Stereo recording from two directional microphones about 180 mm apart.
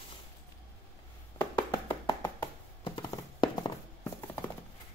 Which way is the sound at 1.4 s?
15° left (ahead or behind).